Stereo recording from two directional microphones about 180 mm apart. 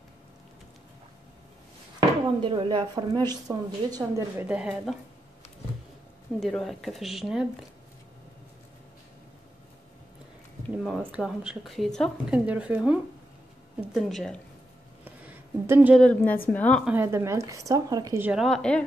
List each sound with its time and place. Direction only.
2.0 s speech: 30° right (ahead or behind)
4.5 s a woman's voice: 5° right (ahead or behind)
6.4 s a woman's voice: centre (ahead or behind)
11.0 s a woman's voice: 5° right (ahead or behind)
15.0 s a sound: 10° right (ahead or behind)
16.0 s a woman's voice: 10° left (ahead or behind)
16.8 s speech: 10° right (ahead or behind)
18.3 s a woman's voice: centre (ahead or behind)